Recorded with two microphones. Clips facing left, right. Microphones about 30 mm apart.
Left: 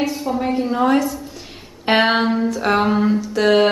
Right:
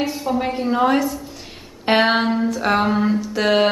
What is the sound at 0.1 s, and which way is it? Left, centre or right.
A woman's voice, centre.